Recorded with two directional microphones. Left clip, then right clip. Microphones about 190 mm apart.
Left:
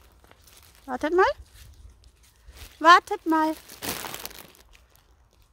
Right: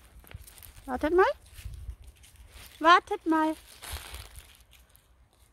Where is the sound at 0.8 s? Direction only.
Centre (ahead or behind).